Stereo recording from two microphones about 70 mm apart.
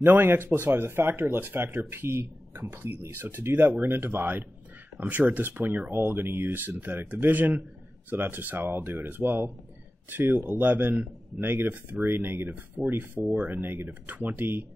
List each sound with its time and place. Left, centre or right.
0.0 s speech: right